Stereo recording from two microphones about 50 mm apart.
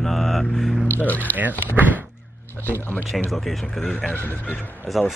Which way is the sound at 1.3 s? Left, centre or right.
Right.